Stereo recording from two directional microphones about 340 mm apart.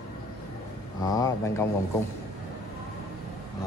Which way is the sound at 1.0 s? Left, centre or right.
Centre.